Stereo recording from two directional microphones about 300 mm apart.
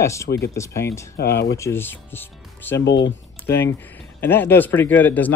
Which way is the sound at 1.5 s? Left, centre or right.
Centre.